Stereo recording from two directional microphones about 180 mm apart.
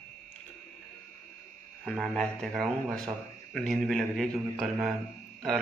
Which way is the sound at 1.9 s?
5° left (ahead or behind).